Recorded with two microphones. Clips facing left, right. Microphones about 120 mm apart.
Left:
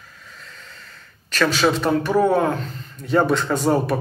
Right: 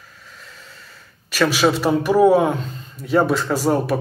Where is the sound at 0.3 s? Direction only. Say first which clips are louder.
Even; 5° right (ahead or behind).